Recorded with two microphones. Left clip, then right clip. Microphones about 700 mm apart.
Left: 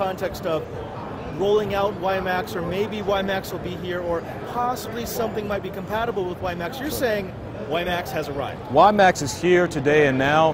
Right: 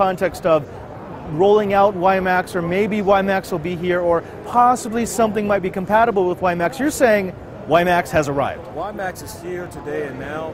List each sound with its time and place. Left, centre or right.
0.0 s a man's voice: right
8.7 s speech: left